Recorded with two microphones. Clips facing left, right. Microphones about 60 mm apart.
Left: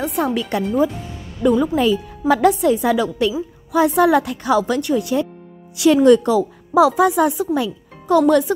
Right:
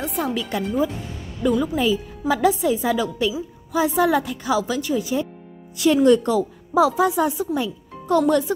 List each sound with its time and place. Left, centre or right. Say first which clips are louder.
0.0 s a woman's voice: left 4 dB; left